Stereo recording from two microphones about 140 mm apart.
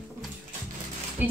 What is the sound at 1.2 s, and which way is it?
Speech, 10° right (ahead or behind).